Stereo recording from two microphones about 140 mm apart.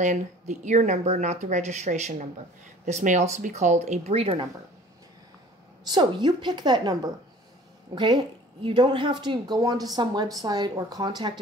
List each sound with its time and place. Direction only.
0.0 s a woman's voice: 60° right (ahead or behind); by 4.5 s 40° right (ahead or behind)
5.9 s a woman's voice: 30° right (ahead or behind)